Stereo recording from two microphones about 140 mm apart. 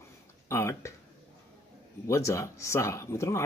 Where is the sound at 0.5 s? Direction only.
20° left (ahead or behind).